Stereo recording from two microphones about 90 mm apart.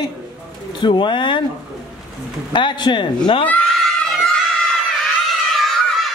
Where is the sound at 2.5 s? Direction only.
65° left (ahead or behind).